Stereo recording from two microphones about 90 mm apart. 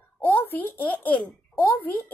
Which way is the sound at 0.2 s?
20° left (ahead or behind).